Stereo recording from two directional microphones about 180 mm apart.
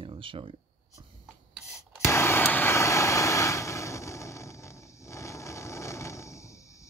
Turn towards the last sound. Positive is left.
turn(degrees=15)  # may be behind; listen again after turning